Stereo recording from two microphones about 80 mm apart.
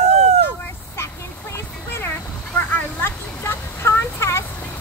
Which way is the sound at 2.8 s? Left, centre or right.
Left.